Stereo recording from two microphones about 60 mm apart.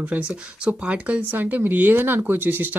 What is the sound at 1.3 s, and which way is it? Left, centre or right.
Speech, right.